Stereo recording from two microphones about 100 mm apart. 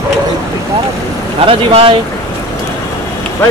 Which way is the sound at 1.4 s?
65° right (ahead or behind).